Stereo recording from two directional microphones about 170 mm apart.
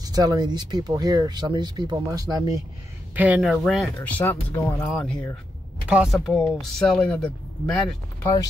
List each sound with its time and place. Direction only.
0.0 s speech: 25° right (ahead or behind)
3.2 s speech: 10° right (ahead or behind)
4.2 s speech: 10° left (ahead or behind)